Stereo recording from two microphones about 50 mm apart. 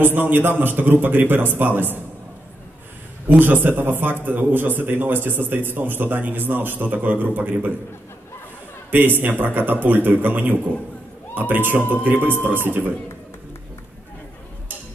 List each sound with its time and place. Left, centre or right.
0.0 s a man's voice: right
3.3 s a man's voice: right
8.9 s a man's voice: right